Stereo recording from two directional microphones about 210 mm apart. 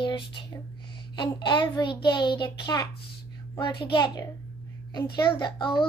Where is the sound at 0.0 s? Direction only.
25° left (ahead or behind).